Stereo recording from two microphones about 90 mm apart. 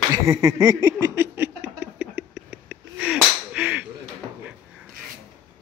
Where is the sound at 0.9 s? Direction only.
25° right (ahead or behind).